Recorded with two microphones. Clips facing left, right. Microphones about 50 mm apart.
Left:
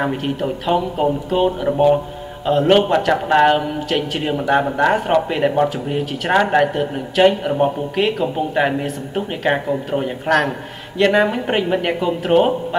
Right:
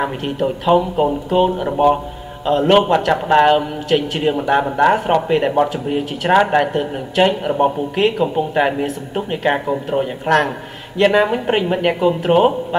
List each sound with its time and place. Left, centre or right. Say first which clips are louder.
0.0 s a man's voice: right 1 dB; centre